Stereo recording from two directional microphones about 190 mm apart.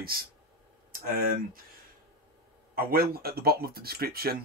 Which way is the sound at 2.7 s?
55° right (ahead or behind).